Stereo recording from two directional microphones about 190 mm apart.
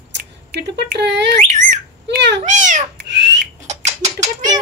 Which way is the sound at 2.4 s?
40° right (ahead or behind).